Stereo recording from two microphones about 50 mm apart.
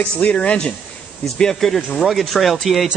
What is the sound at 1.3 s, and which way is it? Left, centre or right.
A man's voice, centre.